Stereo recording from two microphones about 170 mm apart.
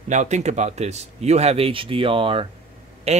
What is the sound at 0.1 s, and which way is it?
Speech, 45° right (ahead or behind).